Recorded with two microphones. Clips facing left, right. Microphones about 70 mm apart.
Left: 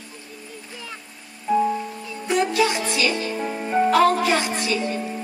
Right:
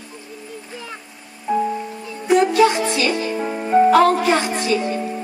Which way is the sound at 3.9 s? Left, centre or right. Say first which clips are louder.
Right 3 dB; right.